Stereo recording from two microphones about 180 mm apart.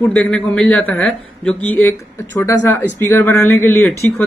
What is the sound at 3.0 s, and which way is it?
Speech, 15° left (ahead or behind).